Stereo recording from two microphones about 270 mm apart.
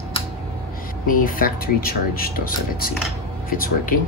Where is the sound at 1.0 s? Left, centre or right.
Left.